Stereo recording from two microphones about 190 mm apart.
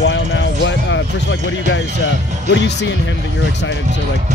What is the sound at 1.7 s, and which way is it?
Speech, 75° left (ahead or behind).